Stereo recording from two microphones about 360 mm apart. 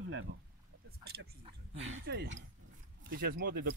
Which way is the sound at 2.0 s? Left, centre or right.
Right.